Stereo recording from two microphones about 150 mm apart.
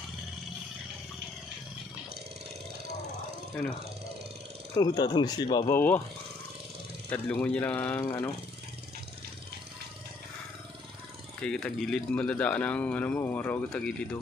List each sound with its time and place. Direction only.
4.7 s speech: 30° left (ahead or behind)
5.7 s speech: 15° left (ahead or behind)
7.1 s speech: 10° left (ahead or behind)
11.4 s speech: 5° left (ahead or behind)